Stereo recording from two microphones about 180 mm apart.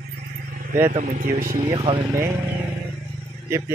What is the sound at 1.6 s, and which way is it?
Speech, 30° right (ahead or behind).